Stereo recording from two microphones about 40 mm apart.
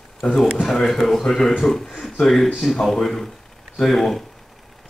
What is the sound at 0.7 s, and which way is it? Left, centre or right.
A man's voice, centre.